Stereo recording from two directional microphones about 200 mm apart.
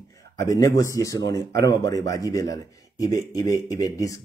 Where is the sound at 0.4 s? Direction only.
15° left (ahead or behind).